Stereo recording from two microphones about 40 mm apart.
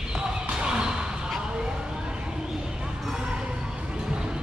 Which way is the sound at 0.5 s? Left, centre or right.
Right.